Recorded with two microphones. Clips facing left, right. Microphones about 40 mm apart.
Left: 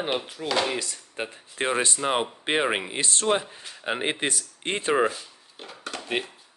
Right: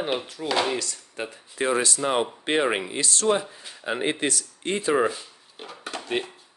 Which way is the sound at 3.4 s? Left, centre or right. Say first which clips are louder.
Right 1 dB; left.